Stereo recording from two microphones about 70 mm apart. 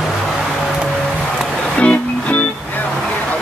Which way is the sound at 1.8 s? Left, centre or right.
Centre.